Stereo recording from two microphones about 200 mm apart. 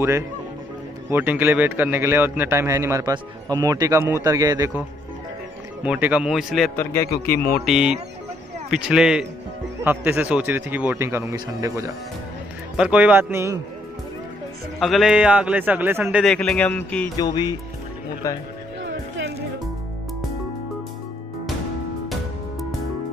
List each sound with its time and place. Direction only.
1.1 s a man's voice: 10° right (ahead or behind)
5.9 s a man's voice: 5° right (ahead or behind)
6.8 s a man's voice: 15° left (ahead or behind)
7.3 s speech: 45° left (ahead or behind)
7.6 s a man's voice: 5° right (ahead or behind)
12.7 s a man's voice: 5° right (ahead or behind)
14.8 s a man's voice: centre (ahead or behind)
17.2 s a man's voice: 20° left (ahead or behind)
18.8 s music: 65° right (ahead or behind)